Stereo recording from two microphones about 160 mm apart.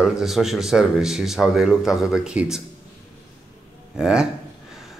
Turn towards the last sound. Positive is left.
turn(degrees=-5)  # may be behind; listen again after turning